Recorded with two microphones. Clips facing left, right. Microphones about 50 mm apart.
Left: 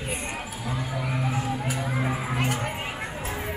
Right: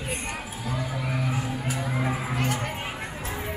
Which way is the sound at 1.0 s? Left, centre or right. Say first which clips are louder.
Left 3 dB; centre.